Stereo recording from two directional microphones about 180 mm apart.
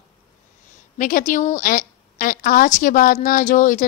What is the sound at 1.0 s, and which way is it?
A woman's voice, 45° left (ahead or behind).